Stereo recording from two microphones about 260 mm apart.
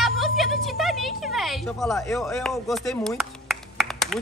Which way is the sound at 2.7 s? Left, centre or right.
Centre.